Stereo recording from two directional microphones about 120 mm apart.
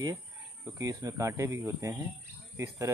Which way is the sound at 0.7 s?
25° right (ahead or behind).